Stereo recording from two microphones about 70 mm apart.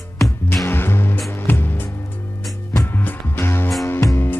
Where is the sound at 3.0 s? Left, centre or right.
Left.